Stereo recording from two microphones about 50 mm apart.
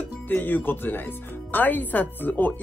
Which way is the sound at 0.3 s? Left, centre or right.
Left.